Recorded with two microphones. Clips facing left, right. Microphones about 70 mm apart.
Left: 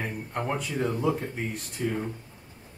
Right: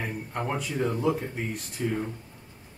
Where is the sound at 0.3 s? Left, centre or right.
Centre.